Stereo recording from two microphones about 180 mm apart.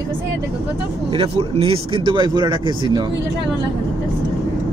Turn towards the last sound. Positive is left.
turn(degrees=-25)  # may be behind; listen again after turning